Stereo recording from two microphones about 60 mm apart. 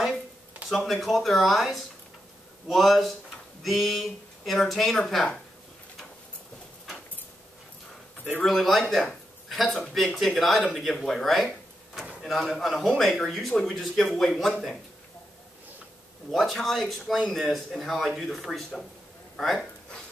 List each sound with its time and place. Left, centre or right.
0.7 s speech: centre
8.2 s speech: left
8.5 s speech: centre
8.9 s a sound: centre
9.9 s speech: centre
11.9 s drawer open or close: centre
12.4 s speech: centre
16.3 s speech: centre